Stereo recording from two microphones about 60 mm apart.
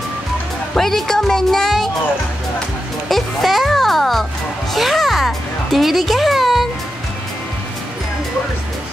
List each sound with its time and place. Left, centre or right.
0.7 s speech: centre
3.1 s a child's voice: centre